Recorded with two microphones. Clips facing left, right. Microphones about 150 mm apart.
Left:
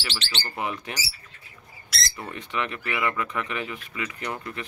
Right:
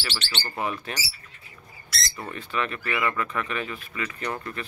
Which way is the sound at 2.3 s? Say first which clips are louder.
Right 1 dB; 20° left (ahead or behind).